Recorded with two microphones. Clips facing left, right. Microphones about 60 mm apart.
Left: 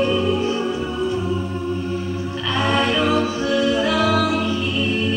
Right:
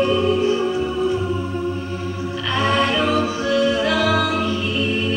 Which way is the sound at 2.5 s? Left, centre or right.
Centre.